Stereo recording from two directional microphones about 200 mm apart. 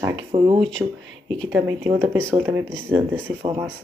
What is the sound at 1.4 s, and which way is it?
Speech, 10° right (ahead or behind).